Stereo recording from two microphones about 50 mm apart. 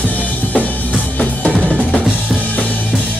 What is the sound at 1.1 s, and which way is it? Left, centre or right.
Drum, left.